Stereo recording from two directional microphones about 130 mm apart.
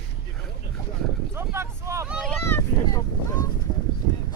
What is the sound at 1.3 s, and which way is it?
Boat, 20° right (ahead or behind).